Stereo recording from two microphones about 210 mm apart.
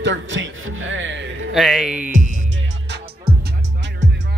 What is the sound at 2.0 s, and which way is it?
Music, 40° right (ahead or behind).